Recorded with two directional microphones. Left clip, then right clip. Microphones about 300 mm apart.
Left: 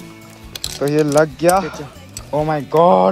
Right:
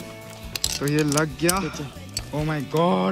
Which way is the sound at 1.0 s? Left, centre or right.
Left.